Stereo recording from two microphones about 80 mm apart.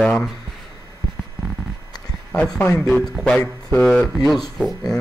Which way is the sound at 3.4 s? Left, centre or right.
Left.